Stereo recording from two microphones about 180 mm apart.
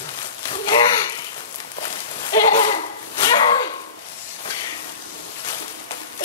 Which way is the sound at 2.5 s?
30° left (ahead or behind).